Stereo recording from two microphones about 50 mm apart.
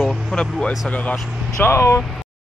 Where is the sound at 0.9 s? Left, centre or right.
Left.